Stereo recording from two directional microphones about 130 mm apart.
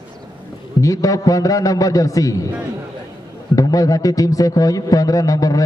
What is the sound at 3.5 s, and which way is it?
A man's voice, 25° left (ahead or behind).